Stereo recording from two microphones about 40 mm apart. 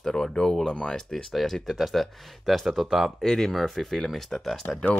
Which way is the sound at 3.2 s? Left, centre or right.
Centre.